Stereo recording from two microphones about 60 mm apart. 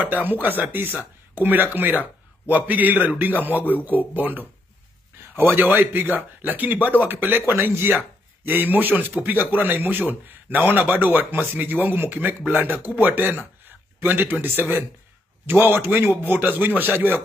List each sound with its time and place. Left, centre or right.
0.0 s a man's voice: right
3.4 s a man's voice: left
3.7 s a man's voice: right